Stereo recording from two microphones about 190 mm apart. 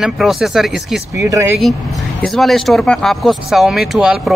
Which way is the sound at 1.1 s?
15° right (ahead or behind).